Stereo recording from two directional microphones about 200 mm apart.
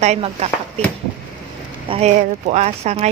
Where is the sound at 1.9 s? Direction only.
35° right (ahead or behind).